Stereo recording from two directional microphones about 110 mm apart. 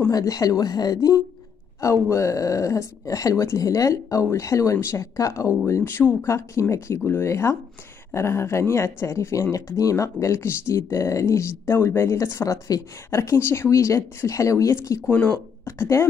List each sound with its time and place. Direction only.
0.1 s speech: 35° left (ahead or behind)
15.0 s speech: 15° left (ahead or behind)
15.3 s speech: 25° left (ahead or behind)